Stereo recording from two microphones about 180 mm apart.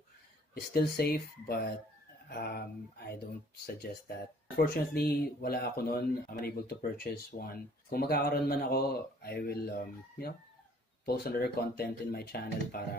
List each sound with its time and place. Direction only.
0.7 s speech: 60° left (ahead or behind)